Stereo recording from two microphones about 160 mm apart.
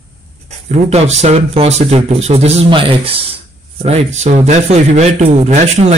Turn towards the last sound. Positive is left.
turn(degrees=-45)  # may be behind; listen again after turning